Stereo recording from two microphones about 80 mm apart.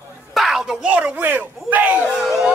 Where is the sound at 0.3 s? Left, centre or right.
Centre.